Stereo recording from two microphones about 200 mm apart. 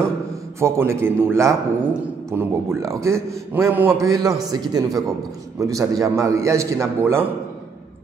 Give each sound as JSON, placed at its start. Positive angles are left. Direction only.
{"t": 0.6, "sound": "a man's voice", "side_deg": -15}